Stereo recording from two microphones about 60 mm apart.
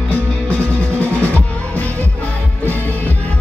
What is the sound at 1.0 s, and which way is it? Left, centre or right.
Music, left.